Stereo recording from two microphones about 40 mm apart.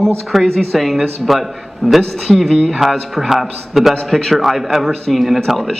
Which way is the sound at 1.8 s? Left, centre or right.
Centre.